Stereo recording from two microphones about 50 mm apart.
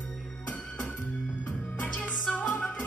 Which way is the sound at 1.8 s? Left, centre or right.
Left.